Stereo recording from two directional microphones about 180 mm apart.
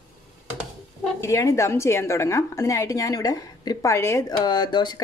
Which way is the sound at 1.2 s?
15° left (ahead or behind).